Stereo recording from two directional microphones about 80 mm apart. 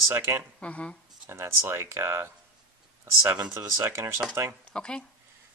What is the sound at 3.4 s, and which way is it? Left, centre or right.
Speech, right.